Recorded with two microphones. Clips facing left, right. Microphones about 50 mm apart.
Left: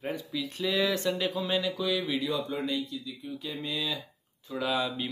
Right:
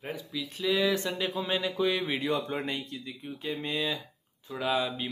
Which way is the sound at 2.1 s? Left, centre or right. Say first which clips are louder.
Right 1 dB; right.